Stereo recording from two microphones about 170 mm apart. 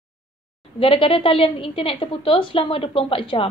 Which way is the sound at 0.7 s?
30° left (ahead or behind).